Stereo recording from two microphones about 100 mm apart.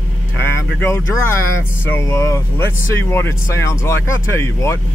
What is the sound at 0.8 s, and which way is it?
Speech, 25° left (ahead or behind).